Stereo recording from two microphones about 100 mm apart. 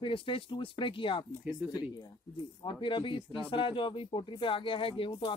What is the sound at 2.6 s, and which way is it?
Speech, 55° left (ahead or behind).